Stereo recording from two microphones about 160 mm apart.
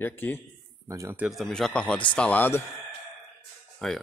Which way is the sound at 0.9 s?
15° right (ahead or behind).